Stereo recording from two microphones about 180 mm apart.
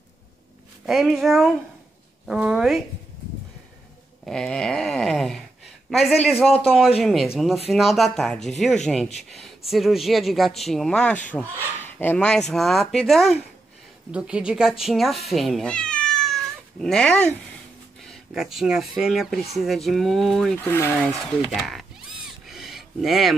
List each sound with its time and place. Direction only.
0.8 s speech: centre (ahead or behind)
4.3 s speech: 5° left (ahead or behind)
15.2 s cat: centre (ahead or behind)
18.0 s speech: centre (ahead or behind)
20.5 s speech: 15° left (ahead or behind)
21.5 s speech: centre (ahead or behind)
22.5 s a sound: centre (ahead or behind)